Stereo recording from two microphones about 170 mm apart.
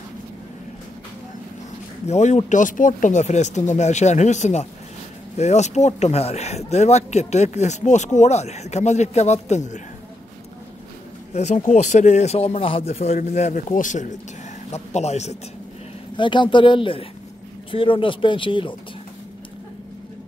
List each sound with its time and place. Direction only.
2.0 s speech: 40° left (ahead or behind)
11.3 s speech: 45° left (ahead or behind)
16.2 s speech: 30° left (ahead or behind)